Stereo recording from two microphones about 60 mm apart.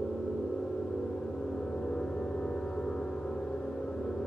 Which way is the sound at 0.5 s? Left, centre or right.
Centre.